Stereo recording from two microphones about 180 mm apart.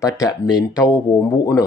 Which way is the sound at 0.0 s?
20° left (ahead or behind).